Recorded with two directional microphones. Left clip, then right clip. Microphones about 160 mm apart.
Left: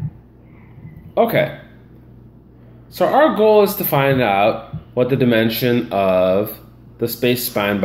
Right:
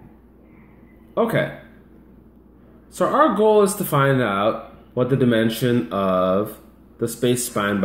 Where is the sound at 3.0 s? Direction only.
40° right (ahead or behind).